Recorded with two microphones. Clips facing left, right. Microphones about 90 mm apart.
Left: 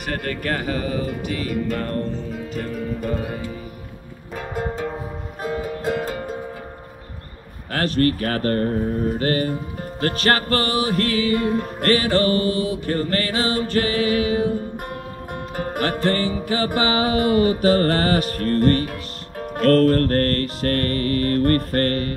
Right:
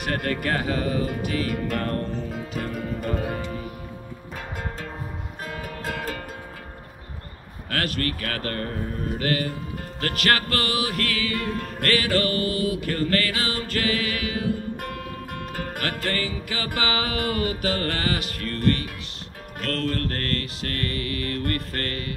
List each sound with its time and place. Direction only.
0.0 s music: centre (ahead or behind)
4.6 s music: 15° left (ahead or behind)
7.7 s speech: 30° left (ahead or behind)
15.5 s speech: 30° left (ahead or behind)